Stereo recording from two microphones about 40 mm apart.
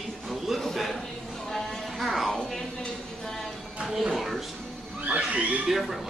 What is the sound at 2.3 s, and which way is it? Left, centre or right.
Music, centre.